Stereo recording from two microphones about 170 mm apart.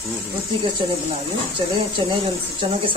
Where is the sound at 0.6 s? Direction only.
30° right (ahead or behind).